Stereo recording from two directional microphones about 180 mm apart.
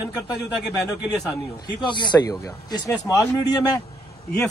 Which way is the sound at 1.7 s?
25° left (ahead or behind).